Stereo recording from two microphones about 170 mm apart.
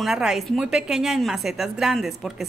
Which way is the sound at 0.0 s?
5° right (ahead or behind).